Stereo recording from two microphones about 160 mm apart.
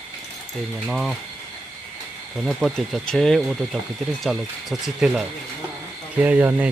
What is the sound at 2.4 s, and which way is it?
Speech, centre (ahead or behind).